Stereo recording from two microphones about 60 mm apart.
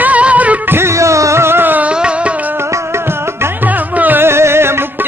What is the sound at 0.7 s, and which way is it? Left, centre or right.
Music, right.